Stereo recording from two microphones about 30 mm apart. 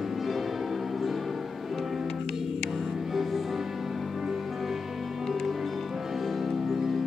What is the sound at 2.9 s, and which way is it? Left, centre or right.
Music, centre.